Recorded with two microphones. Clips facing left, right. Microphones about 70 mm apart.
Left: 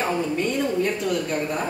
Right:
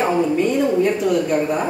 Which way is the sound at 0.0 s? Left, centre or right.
Centre.